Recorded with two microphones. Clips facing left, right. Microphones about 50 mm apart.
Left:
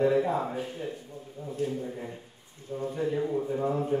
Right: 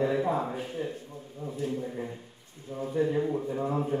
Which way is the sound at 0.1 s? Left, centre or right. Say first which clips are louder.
Left 1 dB; centre.